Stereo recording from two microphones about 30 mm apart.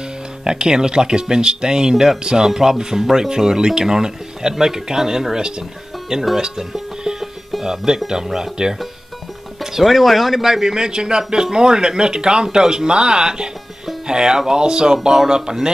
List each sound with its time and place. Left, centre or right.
0.4 s speech: right
7.1 s music: centre
7.6 s speech: centre
9.8 s speech: centre
10.4 s speech: centre